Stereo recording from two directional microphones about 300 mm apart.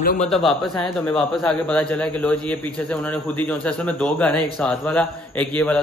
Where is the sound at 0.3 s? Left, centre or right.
Centre.